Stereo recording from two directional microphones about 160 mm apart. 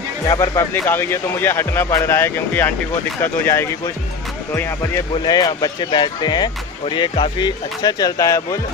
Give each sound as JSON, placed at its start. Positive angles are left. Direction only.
{"t": 0.3, "sound": "speech", "side_deg": 20}
{"t": 5.2, "sound": "speech", "side_deg": 25}